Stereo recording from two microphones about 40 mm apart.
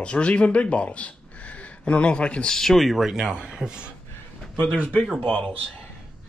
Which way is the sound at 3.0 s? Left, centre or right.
Centre.